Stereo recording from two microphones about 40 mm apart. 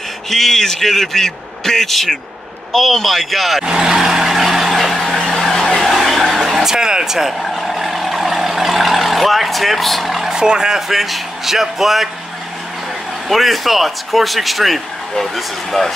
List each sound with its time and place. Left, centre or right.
0.3 s a man's voice: centre
3.6 s vehicle: centre
7.3 s vehicle: centre
10.3 s speech: centre
10.9 s speech: centre
13.3 s speech: centre